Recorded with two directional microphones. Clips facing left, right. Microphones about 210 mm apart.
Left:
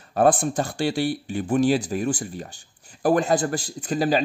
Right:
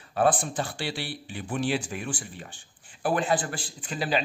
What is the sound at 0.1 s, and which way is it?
A man's voice, 45° left (ahead or behind).